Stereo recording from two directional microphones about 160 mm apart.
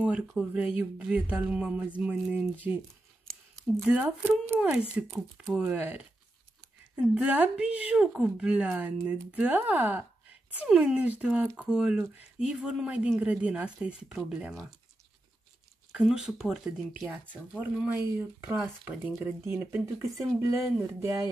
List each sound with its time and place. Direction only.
0.0 s speech: 5° right (ahead or behind)
3.3 s a sound: 5° left (ahead or behind)
3.8 s speech: 10° right (ahead or behind)
15.9 s speech: 5° right (ahead or behind)